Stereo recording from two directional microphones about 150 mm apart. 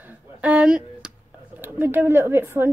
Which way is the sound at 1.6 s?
15° right (ahead or behind).